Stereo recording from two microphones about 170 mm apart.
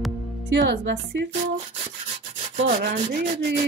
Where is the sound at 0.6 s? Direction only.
90° right.